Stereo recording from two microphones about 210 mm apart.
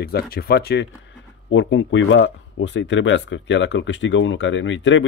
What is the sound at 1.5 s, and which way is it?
Speech, 65° left (ahead or behind).